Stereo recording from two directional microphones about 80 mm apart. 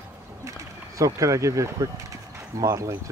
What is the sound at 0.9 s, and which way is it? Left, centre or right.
Speech, right.